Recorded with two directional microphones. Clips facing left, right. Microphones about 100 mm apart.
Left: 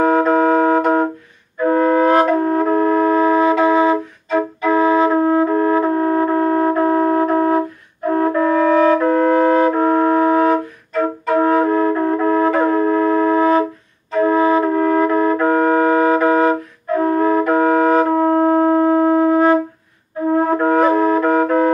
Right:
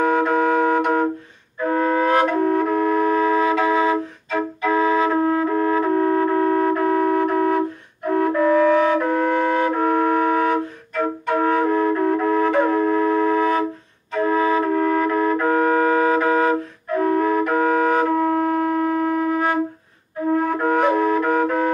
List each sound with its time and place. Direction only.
0.0 s music: 30° left (ahead or behind)
1.7 s flute: 30° left (ahead or behind)
17.0 s wind instrument: 35° left (ahead or behind)
20.3 s flute: 35° left (ahead or behind)